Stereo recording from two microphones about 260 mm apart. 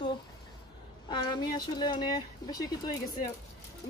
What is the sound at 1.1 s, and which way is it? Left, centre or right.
Speech, centre.